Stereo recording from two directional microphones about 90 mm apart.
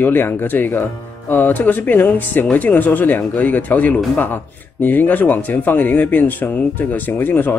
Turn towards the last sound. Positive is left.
turn(degrees=20)  # may be behind; listen again after turning